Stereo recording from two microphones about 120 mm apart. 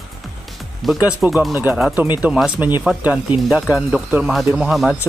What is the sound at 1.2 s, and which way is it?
Speech, 20° right (ahead or behind).